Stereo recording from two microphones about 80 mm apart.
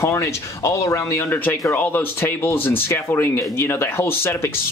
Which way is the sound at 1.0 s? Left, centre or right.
Left.